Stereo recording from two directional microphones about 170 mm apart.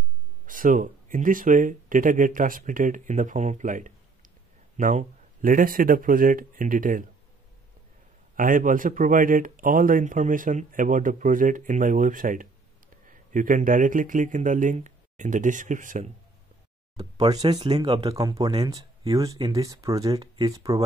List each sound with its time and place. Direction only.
0.5 s speech: 50° right (ahead or behind)
8.4 s speech: 55° right (ahead or behind)
16.9 s speech: 25° right (ahead or behind)